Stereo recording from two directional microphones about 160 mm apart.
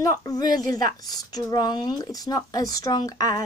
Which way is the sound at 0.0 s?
20° left (ahead or behind).